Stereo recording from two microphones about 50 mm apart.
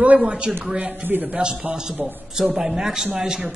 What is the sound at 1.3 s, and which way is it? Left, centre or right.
Speech, centre.